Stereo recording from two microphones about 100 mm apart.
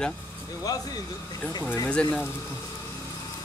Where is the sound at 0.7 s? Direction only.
40° left (ahead or behind).